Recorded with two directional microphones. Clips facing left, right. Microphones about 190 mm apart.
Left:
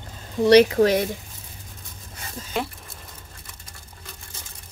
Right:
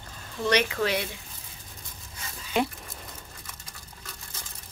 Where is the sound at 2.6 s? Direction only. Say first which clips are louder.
Right 2 dB; centre (ahead or behind).